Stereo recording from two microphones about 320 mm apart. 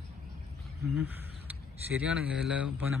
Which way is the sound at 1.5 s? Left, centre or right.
Centre.